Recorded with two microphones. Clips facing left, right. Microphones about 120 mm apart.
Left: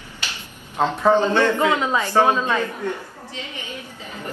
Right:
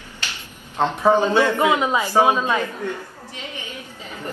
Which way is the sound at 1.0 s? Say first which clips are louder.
Even; 15° right (ahead or behind).